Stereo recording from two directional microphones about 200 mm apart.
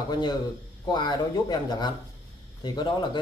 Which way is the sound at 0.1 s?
20° left (ahead or behind).